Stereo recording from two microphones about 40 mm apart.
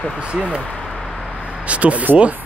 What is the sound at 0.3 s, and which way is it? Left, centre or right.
Speech, right.